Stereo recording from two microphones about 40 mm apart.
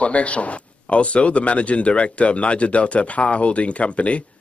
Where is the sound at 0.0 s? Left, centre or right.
Left.